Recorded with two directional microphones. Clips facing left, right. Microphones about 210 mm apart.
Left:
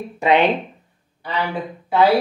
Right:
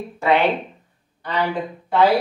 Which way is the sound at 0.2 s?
15° left (ahead or behind).